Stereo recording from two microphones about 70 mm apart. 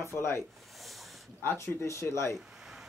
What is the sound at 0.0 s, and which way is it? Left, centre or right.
Speech, left.